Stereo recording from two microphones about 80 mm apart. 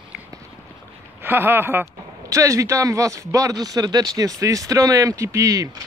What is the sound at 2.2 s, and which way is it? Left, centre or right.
Speech, right.